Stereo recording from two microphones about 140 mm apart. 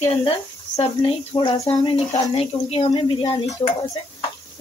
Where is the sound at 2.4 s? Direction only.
50° left (ahead or behind).